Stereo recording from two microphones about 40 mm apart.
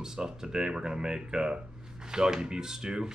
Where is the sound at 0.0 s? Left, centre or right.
Centre.